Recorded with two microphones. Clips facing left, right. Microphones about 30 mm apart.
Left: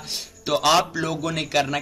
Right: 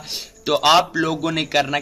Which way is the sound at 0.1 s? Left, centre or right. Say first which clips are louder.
Right 3 dB; centre.